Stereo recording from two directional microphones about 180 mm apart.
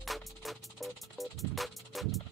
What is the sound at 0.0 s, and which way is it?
Music, centre (ahead or behind).